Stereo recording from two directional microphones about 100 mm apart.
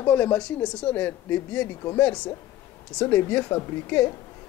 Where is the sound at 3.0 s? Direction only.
15° left (ahead or behind).